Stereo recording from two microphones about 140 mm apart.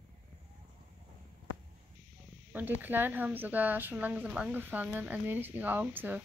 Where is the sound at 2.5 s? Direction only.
15° right (ahead or behind).